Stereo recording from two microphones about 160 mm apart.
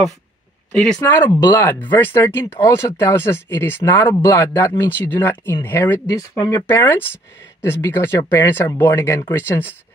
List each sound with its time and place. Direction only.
0.7 s speech: 10° left (ahead or behind)
6.1 s speech: 20° left (ahead or behind)